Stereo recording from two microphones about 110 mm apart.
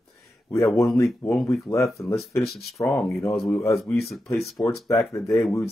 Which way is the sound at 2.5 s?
Centre (ahead or behind).